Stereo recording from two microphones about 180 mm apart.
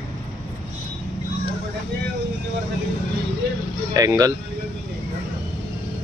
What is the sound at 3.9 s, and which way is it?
Speech, 20° right (ahead or behind).